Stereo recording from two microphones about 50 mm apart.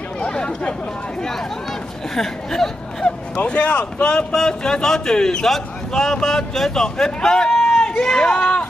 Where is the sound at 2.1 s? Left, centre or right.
Centre.